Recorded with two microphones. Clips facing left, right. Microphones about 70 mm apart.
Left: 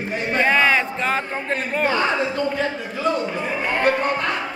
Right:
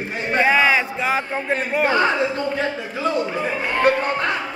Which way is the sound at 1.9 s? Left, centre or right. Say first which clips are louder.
Right 2 dB; right.